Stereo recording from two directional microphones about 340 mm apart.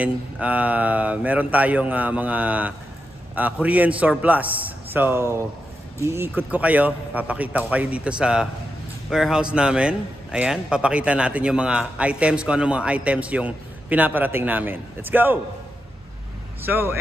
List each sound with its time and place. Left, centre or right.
0.0 s a man's voice: centre
16.6 s speech: centre